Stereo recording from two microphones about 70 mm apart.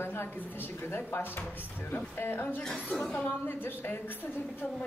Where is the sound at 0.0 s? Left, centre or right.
Left.